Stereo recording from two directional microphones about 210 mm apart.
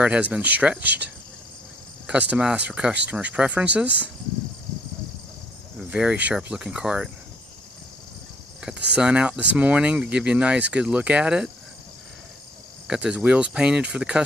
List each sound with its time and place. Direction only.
0.0 s speech: 5° right (ahead or behind)
2.0 s speech: 5° right (ahead or behind)
5.8 s speech: 5° right (ahead or behind)
8.6 s speech: 5° right (ahead or behind)
12.8 s speech: 5° right (ahead or behind)